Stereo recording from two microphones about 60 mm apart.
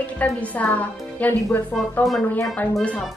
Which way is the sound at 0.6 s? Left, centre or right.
Left.